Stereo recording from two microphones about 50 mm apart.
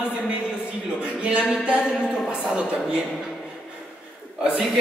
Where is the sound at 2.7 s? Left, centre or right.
Centre.